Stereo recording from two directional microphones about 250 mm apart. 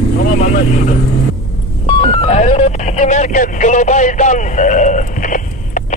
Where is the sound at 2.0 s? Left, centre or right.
Left.